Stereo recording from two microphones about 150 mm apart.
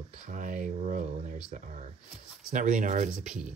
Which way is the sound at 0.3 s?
60° right (ahead or behind).